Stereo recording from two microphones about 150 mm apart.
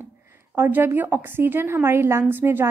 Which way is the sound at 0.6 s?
15° right (ahead or behind).